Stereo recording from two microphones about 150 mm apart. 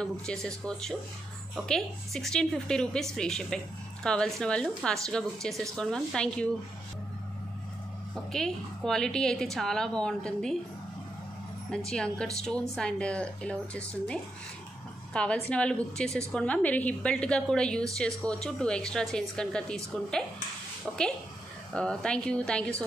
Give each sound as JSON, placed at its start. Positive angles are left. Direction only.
{"t": 0.0, "sound": "a woman's voice", "side_deg": 5}
{"t": 8.3, "sound": "a woman's voice", "side_deg": 5}
{"t": 11.7, "sound": "a woman's voice", "side_deg": 5}
{"t": 21.7, "sound": "speech", "side_deg": 5}